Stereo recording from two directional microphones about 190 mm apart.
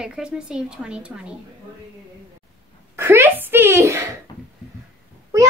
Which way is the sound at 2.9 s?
15° right (ahead or behind).